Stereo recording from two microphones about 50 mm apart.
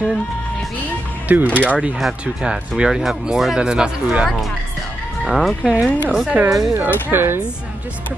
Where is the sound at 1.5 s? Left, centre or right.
Right.